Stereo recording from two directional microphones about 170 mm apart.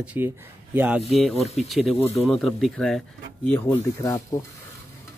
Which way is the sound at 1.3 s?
40° left (ahead or behind).